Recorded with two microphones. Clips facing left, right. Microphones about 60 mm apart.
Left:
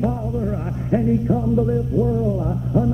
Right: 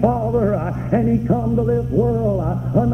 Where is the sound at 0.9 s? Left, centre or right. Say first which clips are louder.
Right 1 dB; right.